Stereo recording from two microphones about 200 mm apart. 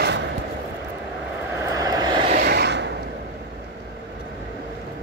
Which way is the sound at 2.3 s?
50° right (ahead or behind).